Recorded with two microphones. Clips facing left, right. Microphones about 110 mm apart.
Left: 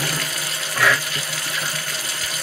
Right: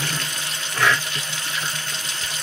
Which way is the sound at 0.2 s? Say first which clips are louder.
Left 2 dB; 25° right (ahead or behind).